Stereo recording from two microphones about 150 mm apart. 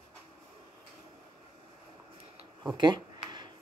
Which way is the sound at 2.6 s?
30° right (ahead or behind).